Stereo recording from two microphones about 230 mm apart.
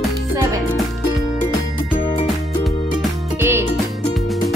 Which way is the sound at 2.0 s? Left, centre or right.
Left.